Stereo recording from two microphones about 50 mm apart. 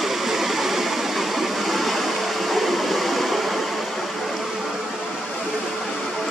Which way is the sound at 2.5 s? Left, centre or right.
Centre.